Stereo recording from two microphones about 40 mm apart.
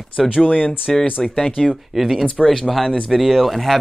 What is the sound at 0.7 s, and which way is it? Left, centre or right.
Speech, centre.